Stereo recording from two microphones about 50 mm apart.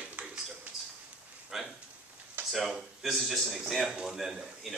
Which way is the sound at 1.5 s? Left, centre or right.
Centre.